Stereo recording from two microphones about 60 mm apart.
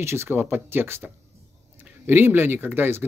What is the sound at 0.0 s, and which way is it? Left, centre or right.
Speech, right.